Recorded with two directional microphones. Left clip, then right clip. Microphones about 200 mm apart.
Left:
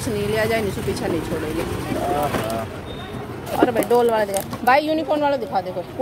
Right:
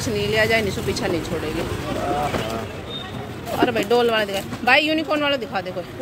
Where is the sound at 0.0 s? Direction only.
10° left (ahead or behind).